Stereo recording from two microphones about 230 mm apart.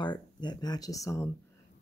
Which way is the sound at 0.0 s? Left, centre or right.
Centre.